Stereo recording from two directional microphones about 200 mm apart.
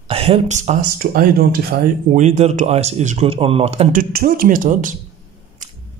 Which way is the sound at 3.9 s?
45° right (ahead or behind).